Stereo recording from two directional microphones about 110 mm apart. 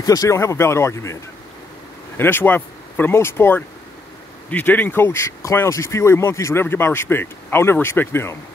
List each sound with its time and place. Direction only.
0.0 s speech: 35° left (ahead or behind)
2.1 s speech: 20° left (ahead or behind)